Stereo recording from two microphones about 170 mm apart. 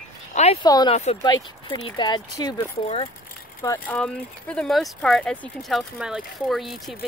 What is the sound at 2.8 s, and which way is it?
Speech, 35° left (ahead or behind).